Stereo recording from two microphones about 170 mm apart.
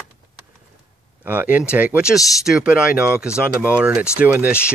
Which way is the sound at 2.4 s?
5° right (ahead or behind).